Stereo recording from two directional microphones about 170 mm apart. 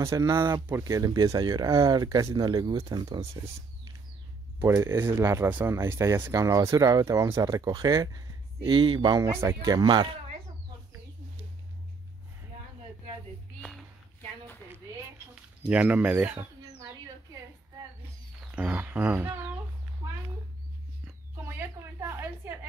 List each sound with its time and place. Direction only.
0.0 s speech: 15° right (ahead or behind)
4.6 s speech: 15° right (ahead or behind)
15.7 s speech: 10° right (ahead or behind)
18.5 s a child's voice: 10° right (ahead or behind)
21.0 s a sound: 15° right (ahead or behind)